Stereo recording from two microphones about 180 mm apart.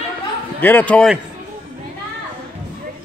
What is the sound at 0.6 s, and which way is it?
Speech, 10° left (ahead or behind).